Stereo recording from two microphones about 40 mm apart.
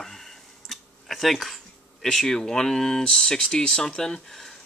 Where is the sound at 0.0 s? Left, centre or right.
Centre.